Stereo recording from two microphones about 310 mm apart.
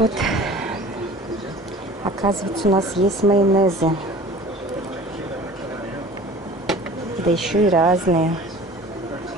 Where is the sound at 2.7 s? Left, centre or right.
Centre.